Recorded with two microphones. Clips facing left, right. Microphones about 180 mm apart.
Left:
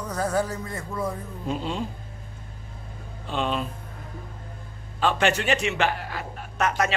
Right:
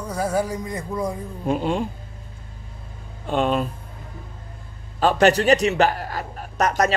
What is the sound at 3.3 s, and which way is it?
Speech, 50° right (ahead or behind).